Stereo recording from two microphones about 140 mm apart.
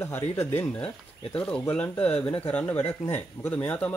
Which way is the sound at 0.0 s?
15° left (ahead or behind).